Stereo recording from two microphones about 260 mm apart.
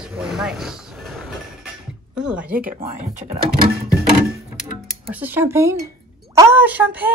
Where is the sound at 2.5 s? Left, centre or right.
Right.